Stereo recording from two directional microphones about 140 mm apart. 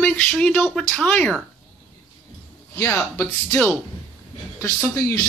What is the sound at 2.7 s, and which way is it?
A man's voice, 25° left (ahead or behind).